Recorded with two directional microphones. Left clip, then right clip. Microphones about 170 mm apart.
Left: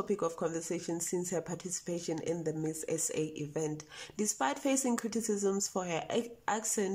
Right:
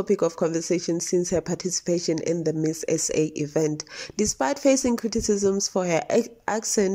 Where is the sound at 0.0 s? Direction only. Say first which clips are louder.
Right 11 dB; 20° right (ahead or behind).